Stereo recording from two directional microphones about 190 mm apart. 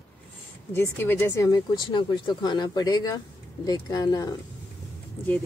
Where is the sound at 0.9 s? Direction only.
10° left (ahead or behind).